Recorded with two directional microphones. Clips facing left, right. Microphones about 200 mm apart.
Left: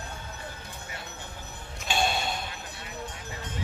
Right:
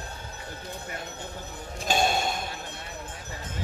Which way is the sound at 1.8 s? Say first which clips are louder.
Right 3 dB; 45° right (ahead or behind).